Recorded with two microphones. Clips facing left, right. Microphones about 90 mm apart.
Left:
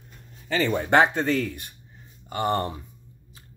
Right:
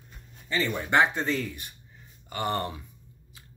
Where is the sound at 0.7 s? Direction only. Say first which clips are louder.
Left 4 dB; 60° left (ahead or behind).